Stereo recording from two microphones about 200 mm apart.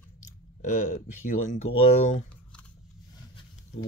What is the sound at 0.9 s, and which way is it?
Speech, 40° left (ahead or behind).